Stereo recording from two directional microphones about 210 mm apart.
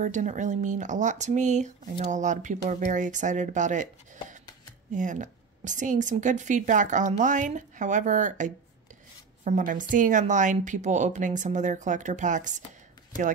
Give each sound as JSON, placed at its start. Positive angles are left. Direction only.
{"t": 0.0, "sound": "speech", "side_deg": -35}